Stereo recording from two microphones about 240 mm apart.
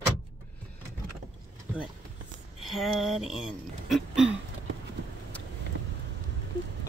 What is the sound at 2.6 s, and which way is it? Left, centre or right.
Speech, centre.